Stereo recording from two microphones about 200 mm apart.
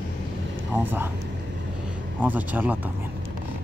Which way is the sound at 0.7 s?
10° right (ahead or behind).